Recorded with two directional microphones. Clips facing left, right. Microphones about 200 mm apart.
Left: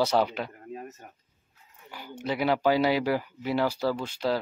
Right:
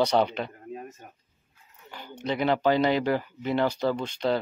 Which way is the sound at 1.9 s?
10° left (ahead or behind).